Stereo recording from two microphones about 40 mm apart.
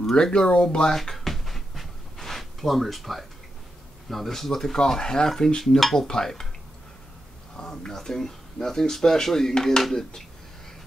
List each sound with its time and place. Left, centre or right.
0.1 s speech: left
0.9 s a sound: centre
4.1 s speech: centre
4.7 s speech: centre
6.0 s speech: centre
7.7 s speech: centre